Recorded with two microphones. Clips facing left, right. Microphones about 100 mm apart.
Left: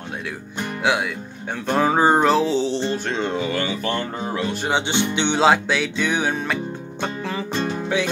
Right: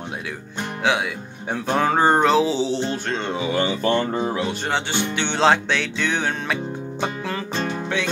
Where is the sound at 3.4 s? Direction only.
20° right (ahead or behind).